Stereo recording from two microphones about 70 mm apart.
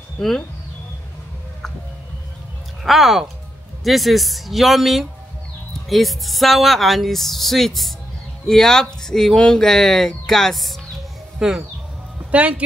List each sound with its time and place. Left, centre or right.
2.8 s speech: centre
12.3 s speech: right